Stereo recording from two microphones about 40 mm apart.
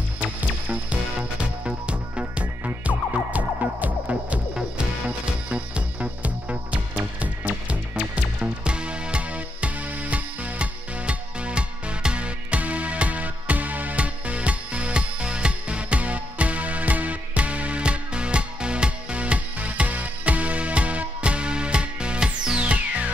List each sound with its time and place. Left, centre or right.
1.4 s music: right
3.1 s music: right
4.6 s music: right
7.9 s music: centre
8.6 s music: right
22.6 s music: right